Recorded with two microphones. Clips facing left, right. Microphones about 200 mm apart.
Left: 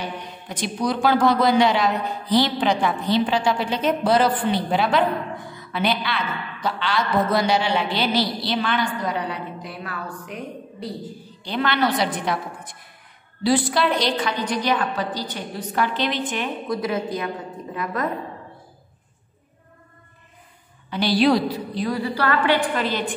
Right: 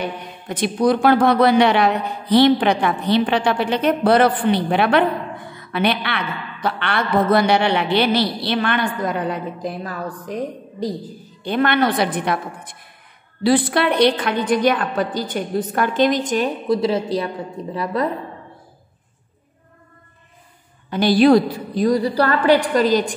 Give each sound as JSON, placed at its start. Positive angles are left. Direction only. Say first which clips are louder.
{"t": 0.0, "sound": "a woman's voice", "louder": "right 4 dB", "side_deg": -55}
{"t": 11.4, "sound": "a woman's voice", "louder": "right 4 dB", "side_deg": -55}
{"t": 16.6, "sound": "a woman's voice", "louder": "right 6 dB", "side_deg": -30}
{"t": 20.9, "sound": "a woman's voice", "louder": "right 6 dB", "side_deg": -50}